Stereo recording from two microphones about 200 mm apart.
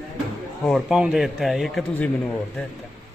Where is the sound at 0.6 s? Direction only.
Centre (ahead or behind).